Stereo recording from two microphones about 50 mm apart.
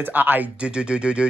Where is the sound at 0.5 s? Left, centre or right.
Right.